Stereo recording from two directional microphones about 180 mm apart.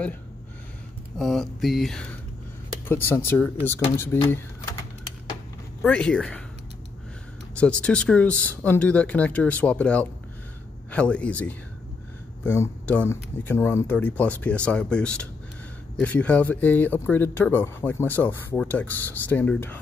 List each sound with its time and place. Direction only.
1.1 s speech: centre (ahead or behind)
5.8 s speech: 5° left (ahead or behind)
7.5 s speech: 5° left (ahead or behind)